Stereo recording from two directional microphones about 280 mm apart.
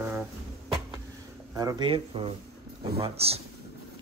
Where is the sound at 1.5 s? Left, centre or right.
Centre.